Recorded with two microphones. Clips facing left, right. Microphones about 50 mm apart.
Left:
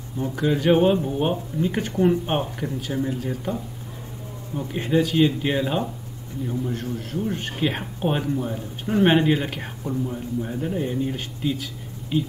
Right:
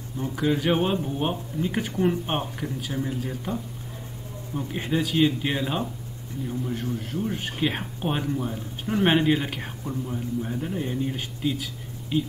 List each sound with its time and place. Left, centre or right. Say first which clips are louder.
0.4 s speech: left 4 dB; centre